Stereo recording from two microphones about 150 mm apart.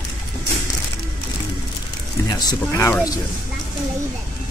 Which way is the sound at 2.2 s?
25° left (ahead or behind).